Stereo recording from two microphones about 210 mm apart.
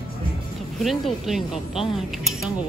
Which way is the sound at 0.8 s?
Centre (ahead or behind).